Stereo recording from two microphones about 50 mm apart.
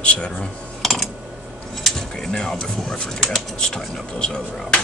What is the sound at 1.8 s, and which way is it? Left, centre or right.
Speech, centre.